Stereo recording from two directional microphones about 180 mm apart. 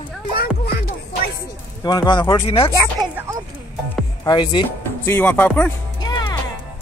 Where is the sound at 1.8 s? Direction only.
20° left (ahead or behind).